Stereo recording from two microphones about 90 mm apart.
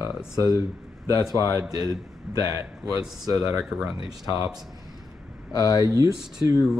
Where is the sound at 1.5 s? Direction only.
40° right (ahead or behind).